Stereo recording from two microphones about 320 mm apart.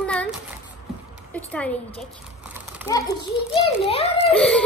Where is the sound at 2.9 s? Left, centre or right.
Centre.